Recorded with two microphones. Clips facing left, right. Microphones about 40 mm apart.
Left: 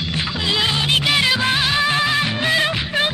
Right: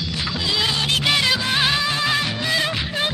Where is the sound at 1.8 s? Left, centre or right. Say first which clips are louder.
Left 3 dB; left.